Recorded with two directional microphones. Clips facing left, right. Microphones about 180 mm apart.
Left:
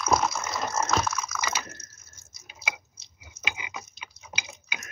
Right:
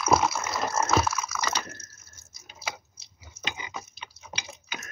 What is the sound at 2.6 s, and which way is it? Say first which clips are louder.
Chewing: even; 5° right (ahead or behind).